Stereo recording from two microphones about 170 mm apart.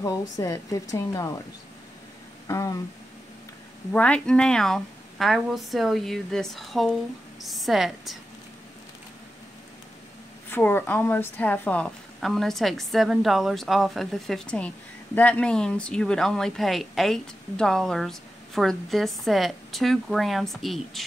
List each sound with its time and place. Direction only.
0.0 s speech: 20° left (ahead or behind)
2.4 s speech: 20° left (ahead or behind)
3.9 s a woman's voice: 5° left (ahead or behind)
10.5 s a woman's voice: 10° left (ahead or behind)